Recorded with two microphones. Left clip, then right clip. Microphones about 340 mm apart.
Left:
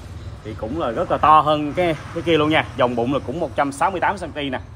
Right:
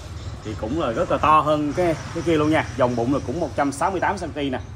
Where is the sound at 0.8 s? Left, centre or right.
Centre.